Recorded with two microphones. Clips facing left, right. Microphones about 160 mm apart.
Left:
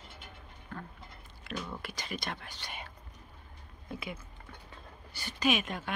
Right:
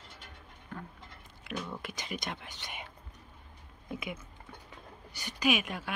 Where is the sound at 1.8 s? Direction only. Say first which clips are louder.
Even; 20° right (ahead or behind).